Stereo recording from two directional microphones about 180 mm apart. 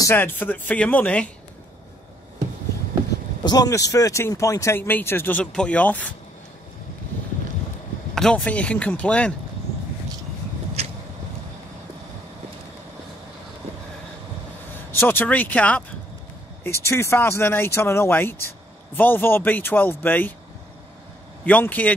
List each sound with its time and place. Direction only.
0.0 s speech: 10° left (ahead or behind)
3.4 s speech: 20° left (ahead or behind)
8.1 s speech: centre (ahead or behind)
10.8 s a sound: 35° right (ahead or behind)
15.0 s speech: 10° left (ahead or behind)
21.5 s speech: 10° left (ahead or behind)